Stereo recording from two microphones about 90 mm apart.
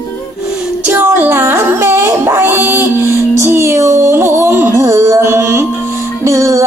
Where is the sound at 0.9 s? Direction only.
25° right (ahead or behind).